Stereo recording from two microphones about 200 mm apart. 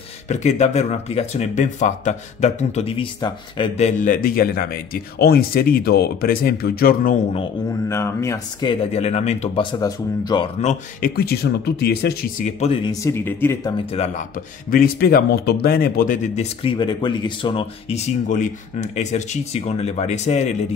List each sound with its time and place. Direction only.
0.3 s speech: 35° left (ahead or behind)
7.9 s speech: 15° left (ahead or behind)
10.6 s speech: 35° left (ahead or behind)
11.1 s speech: 55° left (ahead or behind); by 13.7 s 10° left (ahead or behind)
13.9 s speech: 35° left (ahead or behind)
14.7 s speech: 50° left (ahead or behind)
16.6 s speech: 25° left (ahead or behind)